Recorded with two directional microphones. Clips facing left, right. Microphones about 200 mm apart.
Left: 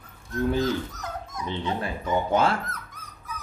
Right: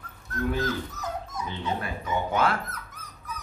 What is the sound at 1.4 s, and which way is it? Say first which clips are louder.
Speech: left 4 dB; 30° left (ahead or behind).